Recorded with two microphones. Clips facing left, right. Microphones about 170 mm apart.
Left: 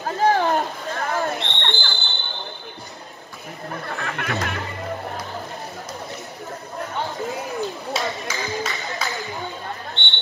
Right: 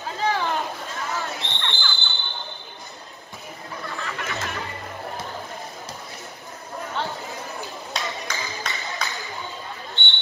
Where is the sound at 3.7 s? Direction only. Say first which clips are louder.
Left 3 dB; 55° left (ahead or behind).